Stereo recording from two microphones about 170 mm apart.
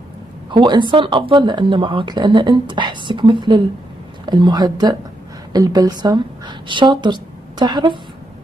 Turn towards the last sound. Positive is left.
turn(degrees=-25)  # may be behind; listen again after turning